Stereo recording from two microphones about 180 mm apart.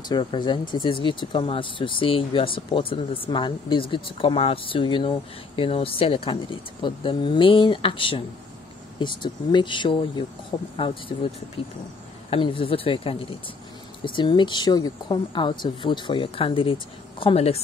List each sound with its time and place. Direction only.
0.1 s speech: 30° left (ahead or behind)